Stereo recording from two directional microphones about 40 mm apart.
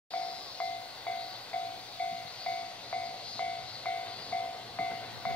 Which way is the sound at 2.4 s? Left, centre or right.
Left.